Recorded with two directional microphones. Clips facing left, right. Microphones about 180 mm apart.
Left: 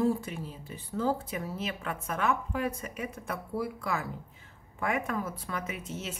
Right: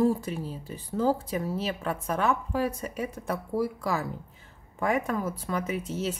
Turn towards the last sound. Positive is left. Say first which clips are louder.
# right 7 dB
turn(degrees=-35)  # may be behind; listen again after turning